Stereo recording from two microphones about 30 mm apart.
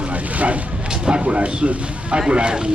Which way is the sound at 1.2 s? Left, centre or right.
Right.